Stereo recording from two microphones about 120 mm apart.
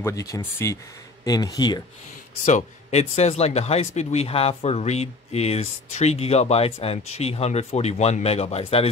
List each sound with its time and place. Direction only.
0.0 s speech: 25° left (ahead or behind)
2.4 s speech: 70° left (ahead or behind)